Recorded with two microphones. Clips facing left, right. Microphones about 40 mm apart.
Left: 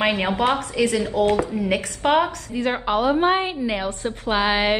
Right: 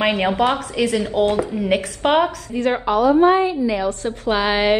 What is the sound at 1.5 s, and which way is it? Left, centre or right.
Speech, centre.